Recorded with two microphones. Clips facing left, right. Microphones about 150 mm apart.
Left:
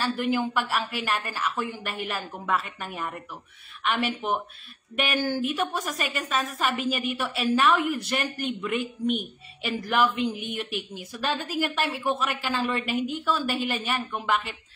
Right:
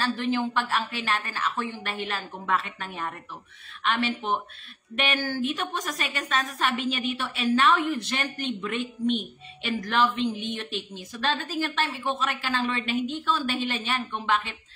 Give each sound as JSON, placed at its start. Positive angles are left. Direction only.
{"t": 0.0, "sound": "a man's voice", "side_deg": 10}